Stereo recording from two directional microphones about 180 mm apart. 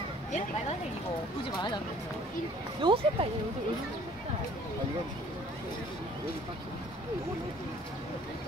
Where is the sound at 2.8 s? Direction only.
25° right (ahead or behind).